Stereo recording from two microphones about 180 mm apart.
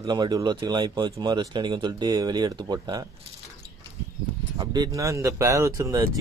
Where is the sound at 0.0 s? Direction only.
25° right (ahead or behind).